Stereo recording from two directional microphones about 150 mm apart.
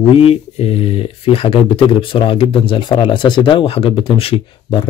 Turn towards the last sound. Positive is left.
turn(degrees=35)  # may be behind; listen again after turning